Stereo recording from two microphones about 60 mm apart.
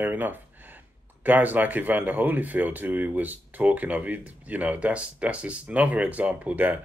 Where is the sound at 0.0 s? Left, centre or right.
Right.